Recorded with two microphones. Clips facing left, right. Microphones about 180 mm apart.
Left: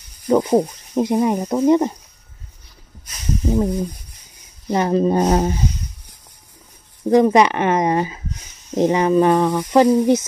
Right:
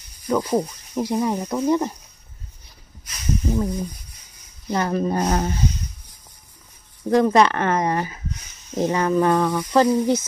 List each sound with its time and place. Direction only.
0.3 s speech: 25° left (ahead or behind)
3.4 s speech: 25° left (ahead or behind)
7.1 s speech: 15° left (ahead or behind)